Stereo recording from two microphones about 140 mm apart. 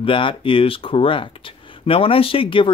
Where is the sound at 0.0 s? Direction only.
40° left (ahead or behind).